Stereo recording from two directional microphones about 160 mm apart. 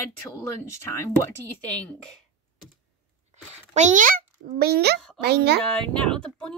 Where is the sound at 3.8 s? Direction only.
50° right (ahead or behind); by 5.6 s 90° right.